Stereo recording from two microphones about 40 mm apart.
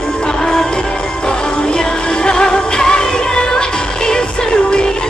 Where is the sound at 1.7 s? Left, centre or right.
Left.